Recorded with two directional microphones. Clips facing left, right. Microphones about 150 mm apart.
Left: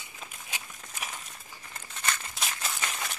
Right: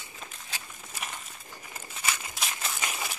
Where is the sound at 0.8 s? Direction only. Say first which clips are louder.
Right 1 dB; centre (ahead or behind).